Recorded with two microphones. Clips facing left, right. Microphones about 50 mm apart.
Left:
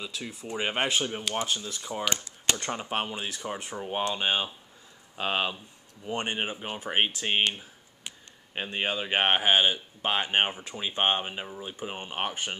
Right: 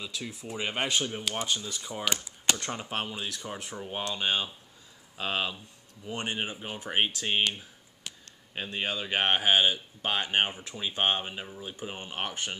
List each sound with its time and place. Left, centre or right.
0.0 s speech: centre
0.6 s speech: centre
8.5 s speech: centre